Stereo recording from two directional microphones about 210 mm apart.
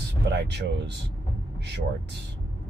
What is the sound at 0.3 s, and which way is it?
Speech, 50° right (ahead or behind).